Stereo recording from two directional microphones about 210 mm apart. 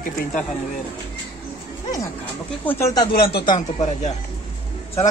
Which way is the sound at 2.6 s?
10° left (ahead or behind).